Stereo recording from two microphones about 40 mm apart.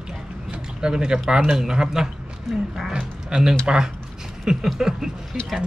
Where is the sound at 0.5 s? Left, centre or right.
Centre.